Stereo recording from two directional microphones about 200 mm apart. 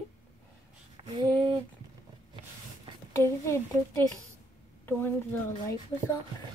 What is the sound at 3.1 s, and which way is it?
A child's voice, 15° left (ahead or behind).